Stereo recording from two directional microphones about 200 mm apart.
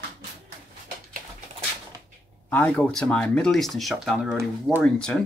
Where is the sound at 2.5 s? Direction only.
10° left (ahead or behind).